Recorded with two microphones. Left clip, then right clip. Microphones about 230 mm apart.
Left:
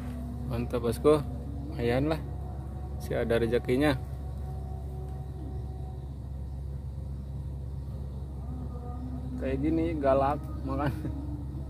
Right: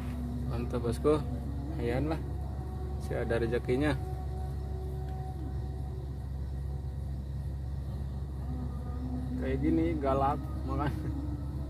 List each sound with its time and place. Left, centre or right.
0.5 s speech: left
9.4 s speech: left